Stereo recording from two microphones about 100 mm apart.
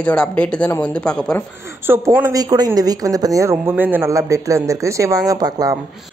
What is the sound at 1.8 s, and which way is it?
Speech, 25° right (ahead or behind).